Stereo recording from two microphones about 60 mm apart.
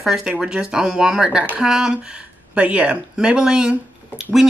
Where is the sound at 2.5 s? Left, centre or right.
Right.